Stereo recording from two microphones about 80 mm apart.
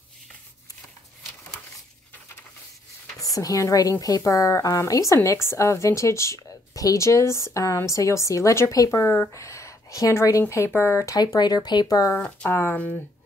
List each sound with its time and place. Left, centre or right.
3.2 s a woman's voice: left
10.7 s a woman's voice: left
11.1 s speech: left
12.4 s speech: left